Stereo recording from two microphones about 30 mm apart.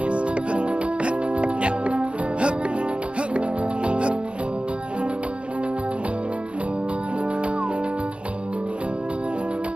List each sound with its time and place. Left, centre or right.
0.0 s music: right